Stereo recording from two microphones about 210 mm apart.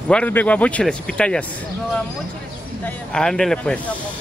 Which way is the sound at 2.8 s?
5° left (ahead or behind).